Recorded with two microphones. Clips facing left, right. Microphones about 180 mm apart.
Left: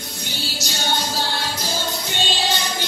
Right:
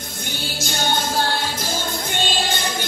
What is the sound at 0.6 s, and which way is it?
Music, 50° right (ahead or behind).